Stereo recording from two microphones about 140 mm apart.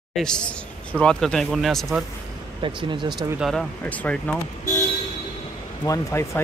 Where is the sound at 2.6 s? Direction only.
35° right (ahead or behind).